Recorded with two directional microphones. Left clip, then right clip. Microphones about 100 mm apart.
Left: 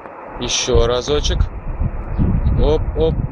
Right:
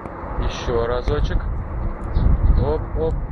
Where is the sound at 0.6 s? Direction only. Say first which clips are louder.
Left 5 dB; 55° left (ahead or behind).